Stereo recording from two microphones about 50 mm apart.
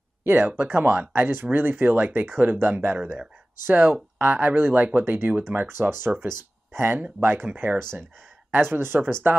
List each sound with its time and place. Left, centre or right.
0.2 s speech: right
7.4 s speech: right